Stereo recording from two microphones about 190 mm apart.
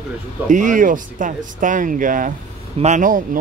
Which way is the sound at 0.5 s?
45° right (ahead or behind).